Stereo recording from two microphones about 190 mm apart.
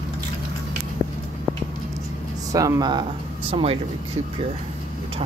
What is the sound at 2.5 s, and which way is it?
Speech, 20° right (ahead or behind).